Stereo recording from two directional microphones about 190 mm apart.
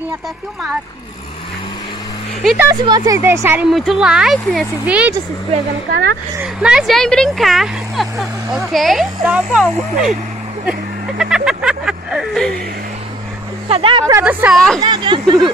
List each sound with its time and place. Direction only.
2.4 s speech: 10° right (ahead or behind)
2.7 s speech: 20° right (ahead or behind)
3.7 s speech: centre (ahead or behind)
6.4 s speech: 5° right (ahead or behind)
13.7 s speech: 30° right (ahead or behind)
14.2 s speech: 5° right (ahead or behind)
14.8 s speech: 25° right (ahead or behind)